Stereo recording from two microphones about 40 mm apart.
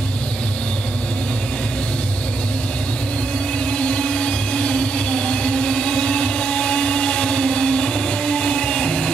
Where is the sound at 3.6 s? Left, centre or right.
Left.